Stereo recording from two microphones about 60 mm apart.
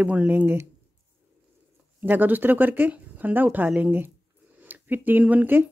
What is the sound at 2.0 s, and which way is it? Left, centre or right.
Speech, right.